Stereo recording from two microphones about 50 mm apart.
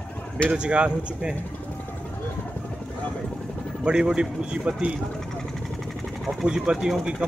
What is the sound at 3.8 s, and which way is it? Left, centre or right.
A man's voice, centre.